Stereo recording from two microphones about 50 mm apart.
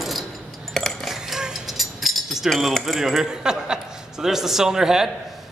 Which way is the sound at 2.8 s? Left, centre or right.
Centre.